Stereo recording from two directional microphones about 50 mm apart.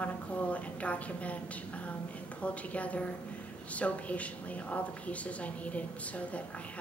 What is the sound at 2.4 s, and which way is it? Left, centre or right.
A woman's voice, left.